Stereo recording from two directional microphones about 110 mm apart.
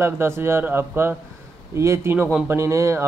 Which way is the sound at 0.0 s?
20° right (ahead or behind).